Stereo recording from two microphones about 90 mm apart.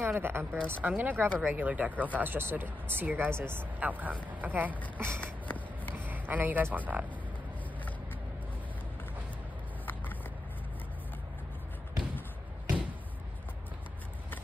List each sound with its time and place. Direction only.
0.0 s speech: 25° right (ahead or behind)
5.2 s a sound: 20° left (ahead or behind)
5.9 s speech: 20° right (ahead or behind)